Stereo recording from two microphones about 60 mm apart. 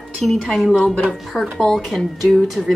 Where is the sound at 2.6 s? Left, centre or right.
Centre.